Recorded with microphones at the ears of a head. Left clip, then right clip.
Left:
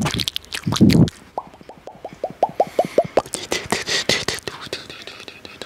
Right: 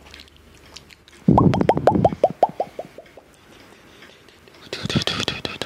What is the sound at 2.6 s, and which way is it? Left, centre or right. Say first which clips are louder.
Beatboxing: left 11 dB; left.